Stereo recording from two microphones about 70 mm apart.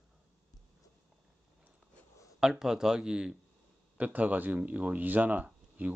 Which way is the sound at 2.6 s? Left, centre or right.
Centre.